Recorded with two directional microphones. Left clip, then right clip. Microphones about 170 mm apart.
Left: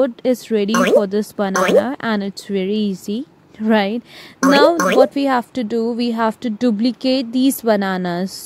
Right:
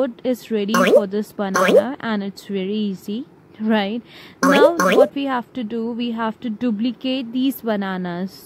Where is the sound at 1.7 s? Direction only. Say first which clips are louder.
Left 1 dB; 40° left (ahead or behind).